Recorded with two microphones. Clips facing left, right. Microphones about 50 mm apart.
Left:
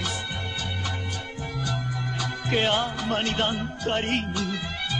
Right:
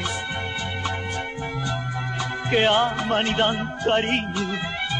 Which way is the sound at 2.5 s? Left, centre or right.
Right.